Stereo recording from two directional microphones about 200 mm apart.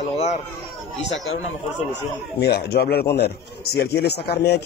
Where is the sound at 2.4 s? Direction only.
55° left (ahead or behind).